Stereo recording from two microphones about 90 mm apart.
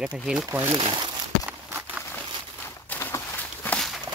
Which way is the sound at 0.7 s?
55° right (ahead or behind).